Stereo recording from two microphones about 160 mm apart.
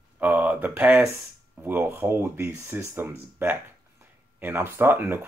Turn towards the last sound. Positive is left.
turn(degrees=-15)  # may be behind; listen again after turning